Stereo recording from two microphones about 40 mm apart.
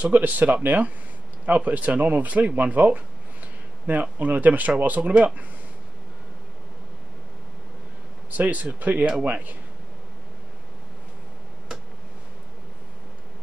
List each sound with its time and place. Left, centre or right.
0.1 s speech: right
8.3 s speech: right